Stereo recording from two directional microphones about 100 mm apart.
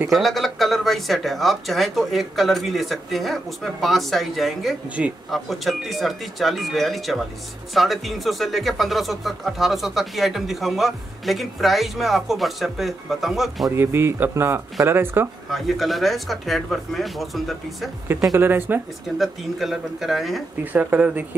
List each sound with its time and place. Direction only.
0.1 s speech: centre (ahead or behind)
5.0 s speech: 10° right (ahead or behind)
5.3 s speech: centre (ahead or behind)
13.7 s speech: 25° right (ahead or behind)
15.5 s speech: centre (ahead or behind)
18.3 s speech: 20° right (ahead or behind)
19.0 s speech: centre (ahead or behind)
20.7 s speech: 15° right (ahead or behind)